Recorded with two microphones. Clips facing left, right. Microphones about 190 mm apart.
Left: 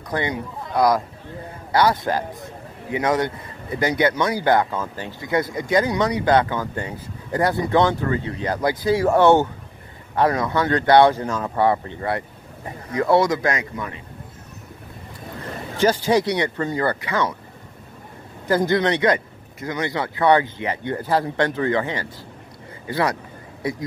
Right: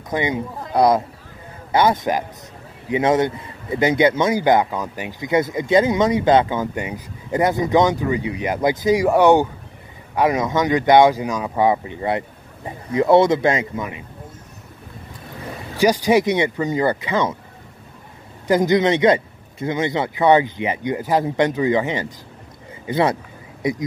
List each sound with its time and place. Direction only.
0.1 s speech: 15° right (ahead or behind)
15.8 s speech: 15° right (ahead or behind)
18.5 s speech: 20° right (ahead or behind)